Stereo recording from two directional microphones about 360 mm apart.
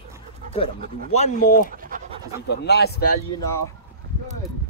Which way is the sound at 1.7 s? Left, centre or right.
Right.